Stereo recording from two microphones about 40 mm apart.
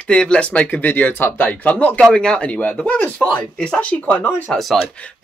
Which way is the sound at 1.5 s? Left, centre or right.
Left.